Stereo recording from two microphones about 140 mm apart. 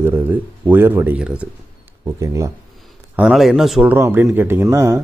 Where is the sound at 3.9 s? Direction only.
15° right (ahead or behind).